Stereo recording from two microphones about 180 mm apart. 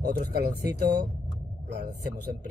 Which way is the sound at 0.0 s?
60° right (ahead or behind).